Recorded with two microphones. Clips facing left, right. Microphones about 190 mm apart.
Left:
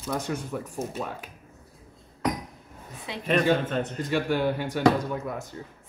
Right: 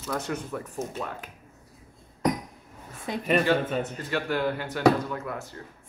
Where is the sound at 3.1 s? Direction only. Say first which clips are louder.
Right 5 dB; 45° right (ahead or behind).